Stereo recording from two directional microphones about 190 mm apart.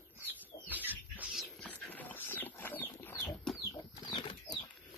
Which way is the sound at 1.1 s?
Centre (ahead or behind).